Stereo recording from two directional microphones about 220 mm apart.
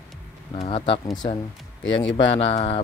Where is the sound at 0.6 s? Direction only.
25° left (ahead or behind).